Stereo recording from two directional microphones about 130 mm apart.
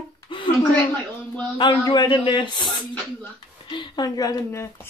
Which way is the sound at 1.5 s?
35° left (ahead or behind).